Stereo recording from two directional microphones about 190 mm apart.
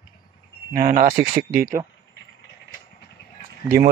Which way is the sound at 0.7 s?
45° right (ahead or behind).